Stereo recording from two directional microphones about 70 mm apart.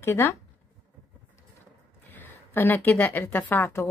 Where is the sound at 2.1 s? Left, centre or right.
Left.